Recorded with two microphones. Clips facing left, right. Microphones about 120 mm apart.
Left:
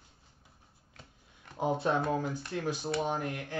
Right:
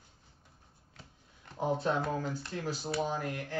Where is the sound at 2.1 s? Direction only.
15° left (ahead or behind).